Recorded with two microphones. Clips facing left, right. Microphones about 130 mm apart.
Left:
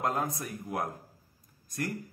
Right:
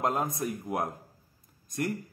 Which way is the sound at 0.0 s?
25° right (ahead or behind).